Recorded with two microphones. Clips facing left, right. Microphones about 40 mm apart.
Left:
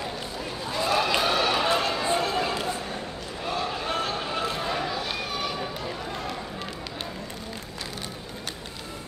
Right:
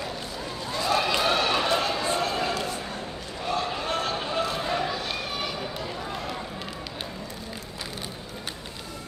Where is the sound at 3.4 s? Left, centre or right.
Centre.